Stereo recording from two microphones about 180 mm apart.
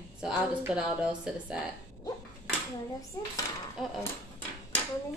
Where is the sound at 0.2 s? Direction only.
5° right (ahead or behind).